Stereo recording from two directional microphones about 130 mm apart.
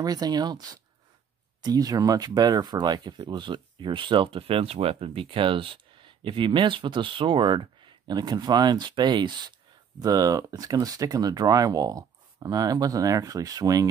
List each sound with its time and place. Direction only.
0.0 s speech: 30° right (ahead or behind)